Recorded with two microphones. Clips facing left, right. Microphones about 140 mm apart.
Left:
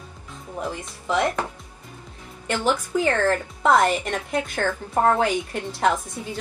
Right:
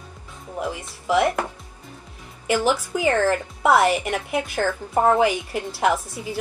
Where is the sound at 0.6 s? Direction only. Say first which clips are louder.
Right 2 dB; 5° right (ahead or behind).